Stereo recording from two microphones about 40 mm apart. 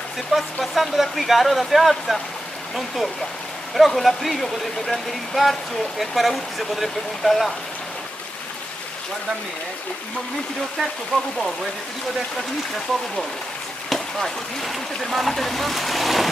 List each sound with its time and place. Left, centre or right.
0.3 s speech: centre
3.7 s speech: centre
11.1 s speech: centre
13.9 s speech: centre